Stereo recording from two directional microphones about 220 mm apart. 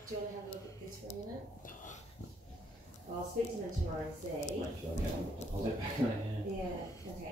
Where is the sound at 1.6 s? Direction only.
35° left (ahead or behind).